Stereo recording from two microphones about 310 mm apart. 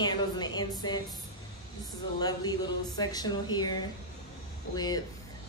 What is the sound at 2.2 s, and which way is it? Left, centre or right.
Speech, centre.